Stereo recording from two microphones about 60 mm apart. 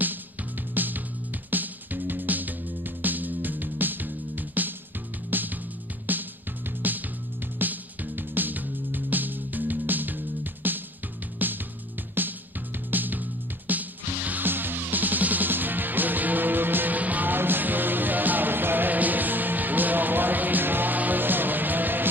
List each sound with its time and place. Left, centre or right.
0.7 s music: right
7.5 s music: right
12.9 s fly: right